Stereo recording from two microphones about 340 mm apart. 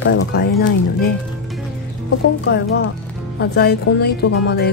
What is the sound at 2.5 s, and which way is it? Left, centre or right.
Speech, left.